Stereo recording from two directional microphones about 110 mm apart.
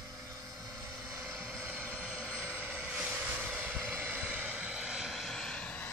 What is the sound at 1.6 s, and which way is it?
Vehicle, 15° right (ahead or behind).